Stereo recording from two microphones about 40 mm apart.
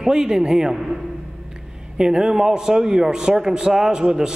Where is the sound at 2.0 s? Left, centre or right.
Centre.